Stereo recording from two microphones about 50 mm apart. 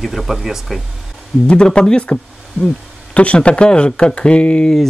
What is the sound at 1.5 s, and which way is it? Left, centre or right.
Speech, centre.